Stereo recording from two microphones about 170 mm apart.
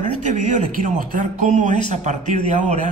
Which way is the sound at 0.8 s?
50° right (ahead or behind).